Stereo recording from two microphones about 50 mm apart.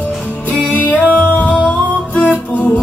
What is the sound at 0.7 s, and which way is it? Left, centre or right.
Music, left.